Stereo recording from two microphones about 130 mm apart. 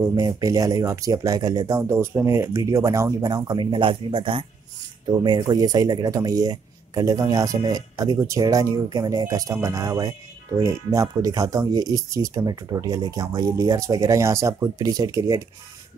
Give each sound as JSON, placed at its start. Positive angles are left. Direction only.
{"t": 0.1, "sound": "speech", "side_deg": -25}